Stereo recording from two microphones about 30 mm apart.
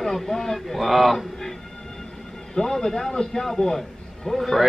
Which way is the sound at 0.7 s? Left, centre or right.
Centre.